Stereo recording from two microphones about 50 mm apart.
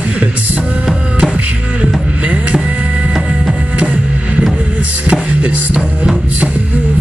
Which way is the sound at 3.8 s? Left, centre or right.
Right.